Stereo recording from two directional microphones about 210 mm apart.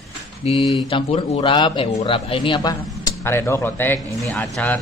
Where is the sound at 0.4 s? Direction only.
30° left (ahead or behind).